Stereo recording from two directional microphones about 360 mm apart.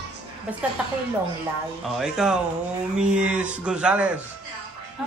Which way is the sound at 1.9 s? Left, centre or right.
Centre.